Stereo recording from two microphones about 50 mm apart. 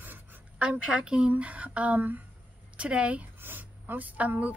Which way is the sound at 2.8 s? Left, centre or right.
Right.